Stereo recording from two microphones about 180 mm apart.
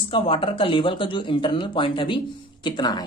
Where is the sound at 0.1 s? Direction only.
30° left (ahead or behind).